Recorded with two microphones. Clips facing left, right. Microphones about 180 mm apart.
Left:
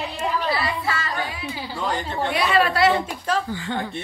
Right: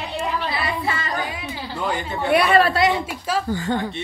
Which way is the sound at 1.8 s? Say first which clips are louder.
Right 1 dB; 10° right (ahead or behind).